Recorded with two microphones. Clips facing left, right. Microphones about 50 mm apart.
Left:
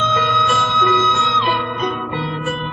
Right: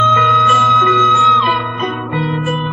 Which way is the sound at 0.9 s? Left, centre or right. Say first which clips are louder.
Right 5 dB; centre.